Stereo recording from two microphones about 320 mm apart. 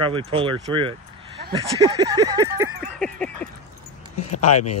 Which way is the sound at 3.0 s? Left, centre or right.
Centre.